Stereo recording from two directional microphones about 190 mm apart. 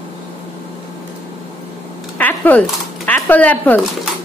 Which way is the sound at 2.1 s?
10° left (ahead or behind).